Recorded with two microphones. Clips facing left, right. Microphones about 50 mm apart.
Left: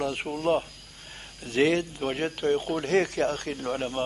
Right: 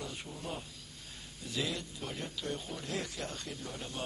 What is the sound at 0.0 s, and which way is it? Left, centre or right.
Speech, left.